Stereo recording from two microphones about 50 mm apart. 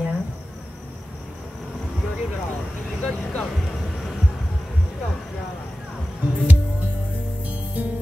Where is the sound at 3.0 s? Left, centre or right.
Centre.